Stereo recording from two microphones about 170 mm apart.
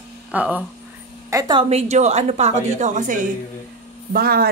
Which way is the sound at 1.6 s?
40° right (ahead or behind).